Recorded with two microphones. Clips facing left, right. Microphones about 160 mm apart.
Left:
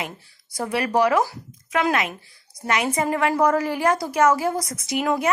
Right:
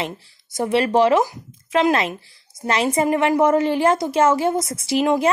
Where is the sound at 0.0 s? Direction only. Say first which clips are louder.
Right 5 dB; 25° right (ahead or behind).